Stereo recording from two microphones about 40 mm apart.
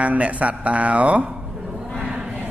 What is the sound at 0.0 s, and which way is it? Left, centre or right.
Speech, right.